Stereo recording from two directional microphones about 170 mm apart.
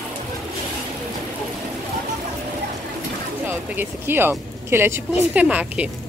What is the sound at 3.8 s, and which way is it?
A woman's voice, 10° right (ahead or behind).